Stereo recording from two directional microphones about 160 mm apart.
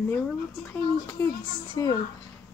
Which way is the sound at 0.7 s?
15° left (ahead or behind).